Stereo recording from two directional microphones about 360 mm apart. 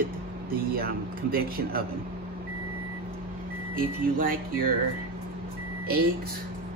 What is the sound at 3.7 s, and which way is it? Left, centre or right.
Speech, right.